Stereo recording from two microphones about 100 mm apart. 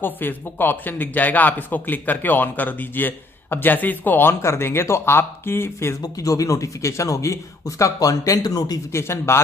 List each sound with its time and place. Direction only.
0.0 s speech: 20° left (ahead or behind); by 8.7 s 40° left (ahead or behind)
8.9 s speech: 25° left (ahead or behind)